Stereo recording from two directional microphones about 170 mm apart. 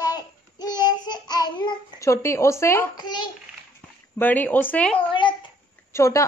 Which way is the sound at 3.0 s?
25° left (ahead or behind).